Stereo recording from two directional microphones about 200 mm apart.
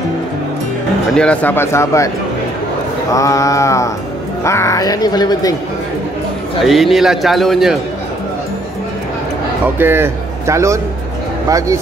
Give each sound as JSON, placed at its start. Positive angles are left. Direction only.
{"t": 1.1, "sound": "speech", "side_deg": 5}
{"t": 3.1, "sound": "speech", "side_deg": 15}
{"t": 6.6, "sound": "speech", "side_deg": 0}
{"t": 9.8, "sound": "a man's voice", "side_deg": -10}